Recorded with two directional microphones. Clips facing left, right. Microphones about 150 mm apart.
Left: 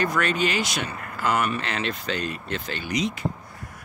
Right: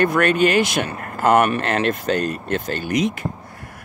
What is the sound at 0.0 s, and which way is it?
Speech, 60° right (ahead or behind).